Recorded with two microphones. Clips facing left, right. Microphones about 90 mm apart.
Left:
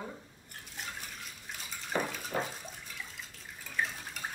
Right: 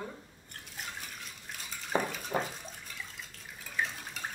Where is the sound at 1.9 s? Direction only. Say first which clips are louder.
Right 2 dB; 20° right (ahead or behind).